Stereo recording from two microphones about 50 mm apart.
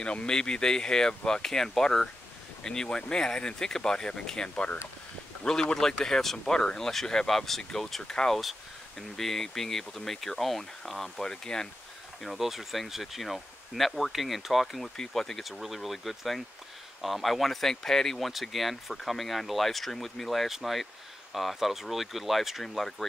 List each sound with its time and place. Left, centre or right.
0.0 s speech: left
12.4 s speech: centre